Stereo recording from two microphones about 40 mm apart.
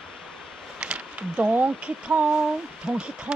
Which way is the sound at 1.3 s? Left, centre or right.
Right.